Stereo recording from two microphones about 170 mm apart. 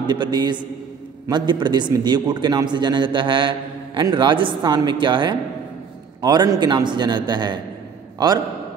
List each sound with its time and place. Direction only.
0.0 s a man's voice: 25° right (ahead or behind)